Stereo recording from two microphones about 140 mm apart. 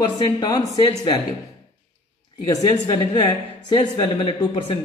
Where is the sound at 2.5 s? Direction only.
35° left (ahead or behind).